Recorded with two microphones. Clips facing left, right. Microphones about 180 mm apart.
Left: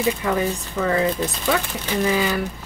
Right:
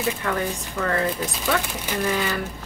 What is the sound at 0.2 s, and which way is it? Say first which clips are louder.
Speech: left 4 dB; 10° left (ahead or behind).